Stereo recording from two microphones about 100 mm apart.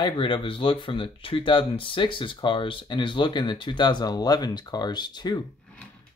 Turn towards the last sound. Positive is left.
turn(degrees=45)  # may be behind; listen again after turning